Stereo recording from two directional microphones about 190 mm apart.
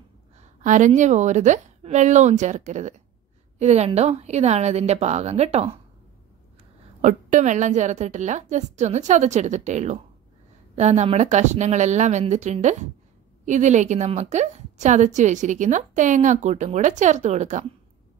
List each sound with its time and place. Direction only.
0.4 s a woman's voice: 40° right (ahead or behind)
7.0 s a woman's voice: 40° right (ahead or behind)